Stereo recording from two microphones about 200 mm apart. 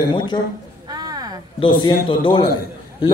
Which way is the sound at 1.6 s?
25° left (ahead or behind).